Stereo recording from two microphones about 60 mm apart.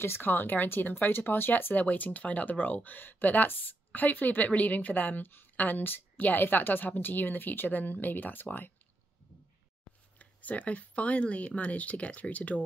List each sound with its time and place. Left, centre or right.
0.0 s speech: left
10.1 s speech: left